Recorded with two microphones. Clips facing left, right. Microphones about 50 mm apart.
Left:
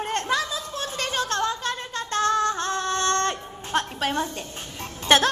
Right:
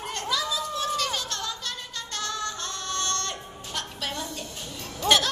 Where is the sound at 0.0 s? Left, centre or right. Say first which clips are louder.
Left 4 dB; left.